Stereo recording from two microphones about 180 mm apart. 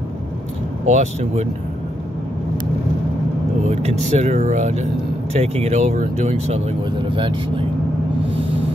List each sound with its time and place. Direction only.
0.8 s speech: 40° right (ahead or behind)
3.6 s speech: 40° right (ahead or behind)